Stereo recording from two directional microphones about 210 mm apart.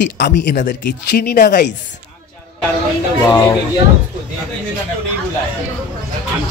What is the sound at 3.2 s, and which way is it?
Speech, 10° left (ahead or behind).